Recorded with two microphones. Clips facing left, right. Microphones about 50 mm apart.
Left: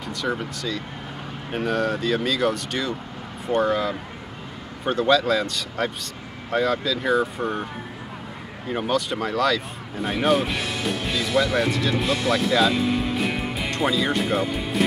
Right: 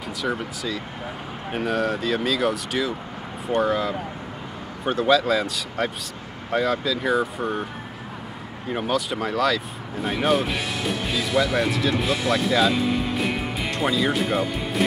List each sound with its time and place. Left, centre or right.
0.2 s speech: centre
8.6 s speech: centre